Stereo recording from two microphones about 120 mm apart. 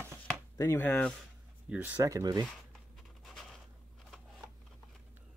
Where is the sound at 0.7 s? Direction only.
15° left (ahead or behind).